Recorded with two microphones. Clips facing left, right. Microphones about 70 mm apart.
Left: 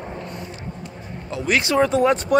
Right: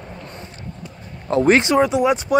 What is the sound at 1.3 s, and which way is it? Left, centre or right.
Speech, right.